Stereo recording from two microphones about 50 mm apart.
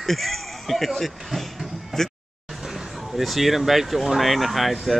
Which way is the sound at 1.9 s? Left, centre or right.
Centre.